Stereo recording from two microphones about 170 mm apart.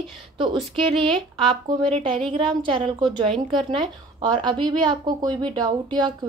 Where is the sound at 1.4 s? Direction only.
30° right (ahead or behind).